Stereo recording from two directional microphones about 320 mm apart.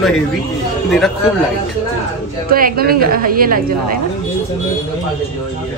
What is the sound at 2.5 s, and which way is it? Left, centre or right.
A woman's voice, right.